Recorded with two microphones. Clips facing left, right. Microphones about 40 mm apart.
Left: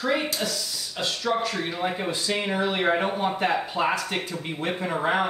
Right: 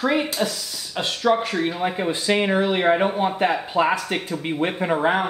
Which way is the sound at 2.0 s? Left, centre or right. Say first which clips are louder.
Right 6 dB; right.